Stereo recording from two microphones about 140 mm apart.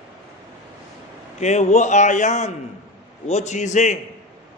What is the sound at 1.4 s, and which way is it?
A man's voice, 55° left (ahead or behind).